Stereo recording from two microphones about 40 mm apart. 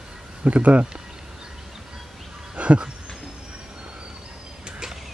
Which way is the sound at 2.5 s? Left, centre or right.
Right.